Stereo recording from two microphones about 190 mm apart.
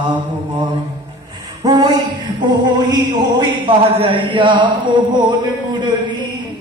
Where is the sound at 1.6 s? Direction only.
20° right (ahead or behind).